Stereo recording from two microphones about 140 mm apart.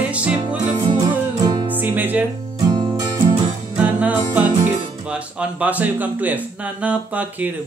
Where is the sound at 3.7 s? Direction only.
10° right (ahead or behind).